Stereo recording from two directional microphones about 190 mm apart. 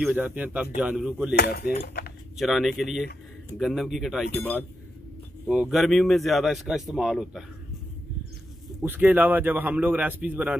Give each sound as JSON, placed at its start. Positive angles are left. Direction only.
{"t": 0.0, "sound": "a man's voice", "side_deg": -5}
{"t": 1.3, "sound": "cutlery", "side_deg": 55}
{"t": 2.3, "sound": "speech", "side_deg": 0}
{"t": 5.5, "sound": "speech", "side_deg": -5}
{"t": 8.8, "sound": "a man's voice", "side_deg": -10}